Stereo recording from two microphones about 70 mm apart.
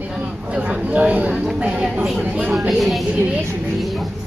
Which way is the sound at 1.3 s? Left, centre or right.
Centre.